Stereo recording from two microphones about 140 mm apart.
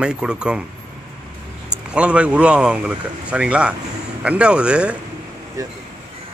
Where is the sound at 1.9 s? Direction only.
10° right (ahead or behind).